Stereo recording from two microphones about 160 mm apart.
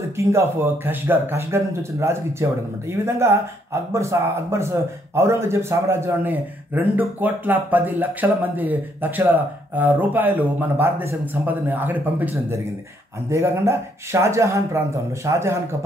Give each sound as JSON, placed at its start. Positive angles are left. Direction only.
{"t": 0.2, "sound": "speech", "side_deg": -15}